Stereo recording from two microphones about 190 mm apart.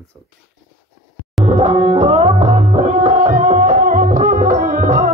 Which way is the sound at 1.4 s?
35° right (ahead or behind).